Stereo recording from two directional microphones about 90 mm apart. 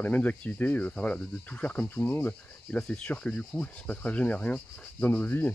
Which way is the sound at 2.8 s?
10° left (ahead or behind).